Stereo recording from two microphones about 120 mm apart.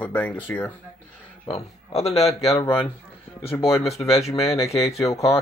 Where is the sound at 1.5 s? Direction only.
60° left (ahead or behind).